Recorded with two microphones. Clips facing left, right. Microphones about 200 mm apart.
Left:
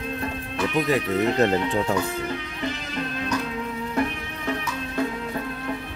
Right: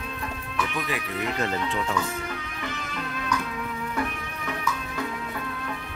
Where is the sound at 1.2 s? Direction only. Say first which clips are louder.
Left 6 dB; 35° left (ahead or behind).